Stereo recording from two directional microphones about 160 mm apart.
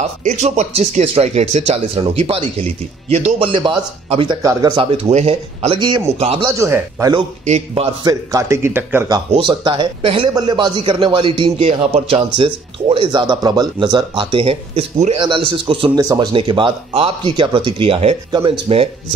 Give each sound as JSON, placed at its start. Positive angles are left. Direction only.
{"t": 0.0, "sound": "a man's voice", "side_deg": -50}
{"t": 4.4, "sound": "a man's voice", "side_deg": -20}
{"t": 5.1, "sound": "a man's voice", "side_deg": -40}
{"t": 6.1, "sound": "a man's voice", "side_deg": -40}
{"t": 6.4, "sound": "a man's voice", "side_deg": -20}
{"t": 7.4, "sound": "a man's voice", "side_deg": -40}
{"t": 8.0, "sound": "a man's voice", "side_deg": -20}
{"t": 9.3, "sound": "a man's voice", "side_deg": -30}